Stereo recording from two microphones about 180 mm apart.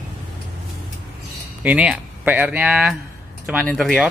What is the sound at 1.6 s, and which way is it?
Speech, 5° right (ahead or behind).